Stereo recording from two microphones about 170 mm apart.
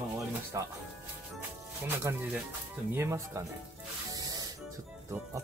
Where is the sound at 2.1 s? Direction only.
15° right (ahead or behind).